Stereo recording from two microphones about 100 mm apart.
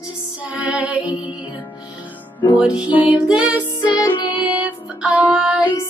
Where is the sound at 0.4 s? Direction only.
10° right (ahead or behind).